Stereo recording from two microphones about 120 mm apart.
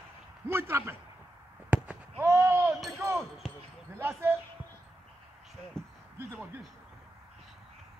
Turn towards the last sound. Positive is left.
turn(degrees=-15)  # may be behind; listen again after turning